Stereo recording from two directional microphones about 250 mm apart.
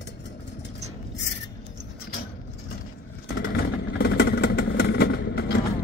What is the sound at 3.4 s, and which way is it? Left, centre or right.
Vehicle, left.